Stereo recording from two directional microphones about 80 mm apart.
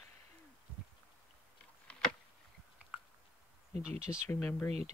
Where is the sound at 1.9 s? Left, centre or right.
Centre.